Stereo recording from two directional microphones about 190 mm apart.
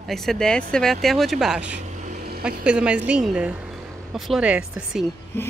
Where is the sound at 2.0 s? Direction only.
50° right (ahead or behind).